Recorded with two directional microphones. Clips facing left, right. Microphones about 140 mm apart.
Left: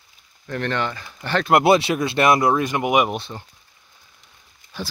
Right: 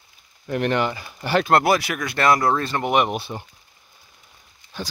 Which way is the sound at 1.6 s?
25° left (ahead or behind).